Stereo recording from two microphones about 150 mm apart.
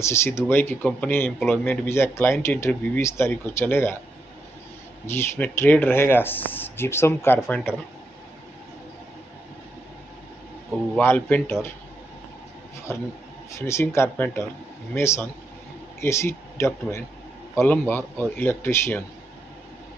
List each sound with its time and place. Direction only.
0.0 s speech: 15° left (ahead or behind)
5.0 s speech: 15° left (ahead or behind)
11.0 s speech: 10° left (ahead or behind)
12.9 s speech: 15° left (ahead or behind)